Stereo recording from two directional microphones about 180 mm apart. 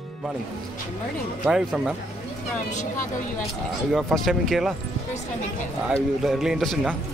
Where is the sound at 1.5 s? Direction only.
5° right (ahead or behind).